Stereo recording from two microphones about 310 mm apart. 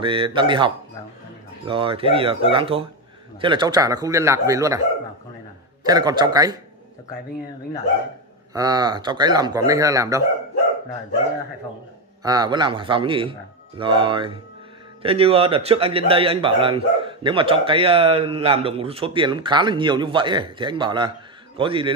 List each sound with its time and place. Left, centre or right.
0.0 s a man's voice: centre
5.9 s a man's voice: centre
8.5 s a man's voice: centre
12.2 s a man's voice: centre